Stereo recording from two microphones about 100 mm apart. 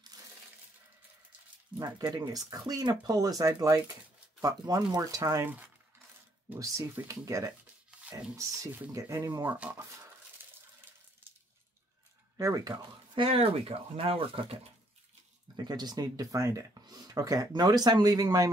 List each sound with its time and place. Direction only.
0.1 s coin: 40° right (ahead or behind)
1.8 s speech: 40° right (ahead or behind)
7.1 s speech: 35° right (ahead or behind)
8.9 s speech: 30° right (ahead or behind)
9.5 s speech: 15° right (ahead or behind)
12.4 s speech: 35° right (ahead or behind)
13.1 s speech: 65° right (ahead or behind)
15.5 s speech: 45° right (ahead or behind)